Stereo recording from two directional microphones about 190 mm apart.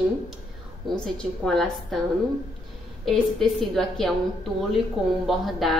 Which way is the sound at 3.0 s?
Centre (ahead or behind).